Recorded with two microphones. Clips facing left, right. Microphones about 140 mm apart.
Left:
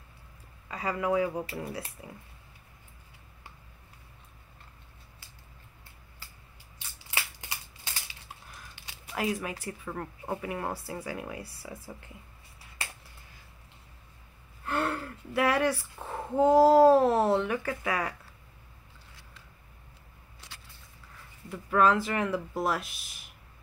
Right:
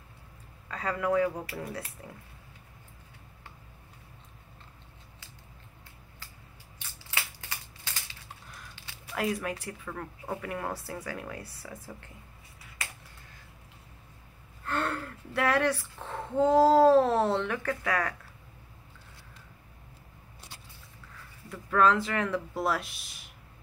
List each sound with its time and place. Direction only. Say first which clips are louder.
0.7 s speech: even; 5° left (ahead or behind)
1.4 s speech: left 2 dB; 25° left (ahead or behind)
2.0 s speech: even; 10° left (ahead or behind)
7.3 s scissors: even; 15° left (ahead or behind)
9.1 s speech: right 1 dB; 5° left (ahead or behind)
9.8 s speech: left 2 dB; 20° left (ahead or behind)
14.6 s a woman's voice: left 1 dB; 10° left (ahead or behind)
21.5 s speech: even; 10° left (ahead or behind)